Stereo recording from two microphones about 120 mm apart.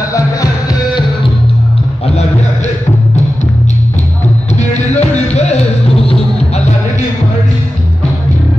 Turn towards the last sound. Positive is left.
turn(degrees=55)  # may be behind; listen again after turning